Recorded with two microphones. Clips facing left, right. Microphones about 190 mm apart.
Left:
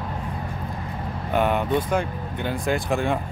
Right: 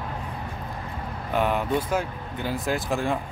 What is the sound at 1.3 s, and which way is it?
Speech, centre (ahead or behind).